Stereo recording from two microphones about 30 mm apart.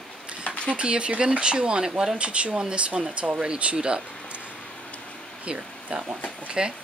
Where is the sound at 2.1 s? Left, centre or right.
Right.